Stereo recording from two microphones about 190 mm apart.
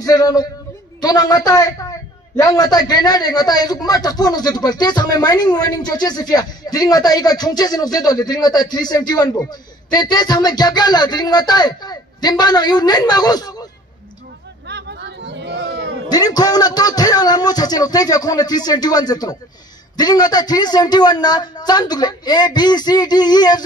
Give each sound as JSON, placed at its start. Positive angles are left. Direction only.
{"t": 0.0, "sound": "a man's voice", "side_deg": 20}
{"t": 14.7, "sound": "chatter", "side_deg": -65}
{"t": 16.1, "sound": "a man's voice", "side_deg": 20}